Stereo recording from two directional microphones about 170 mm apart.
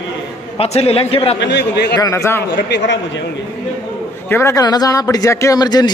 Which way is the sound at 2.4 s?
90° left.